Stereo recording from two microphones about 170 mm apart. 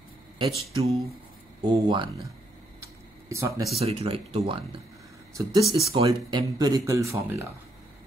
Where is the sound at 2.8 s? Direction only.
15° right (ahead or behind).